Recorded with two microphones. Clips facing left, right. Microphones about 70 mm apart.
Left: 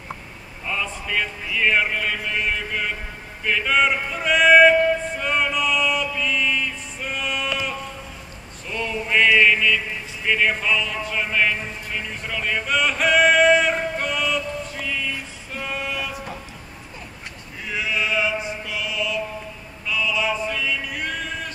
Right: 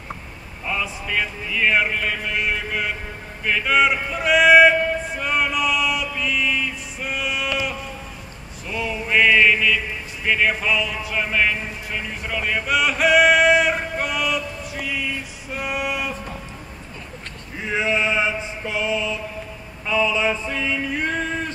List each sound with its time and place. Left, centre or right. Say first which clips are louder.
0.7 s speech: right 1 dB; centre
3.4 s a sound: right 1 dB; centre
9.3 s mantra: even; centre
10.2 s a sound: right 1 dB; centre
17.6 s mantra: right 4 dB; right
19.9 s chant: right 3 dB; right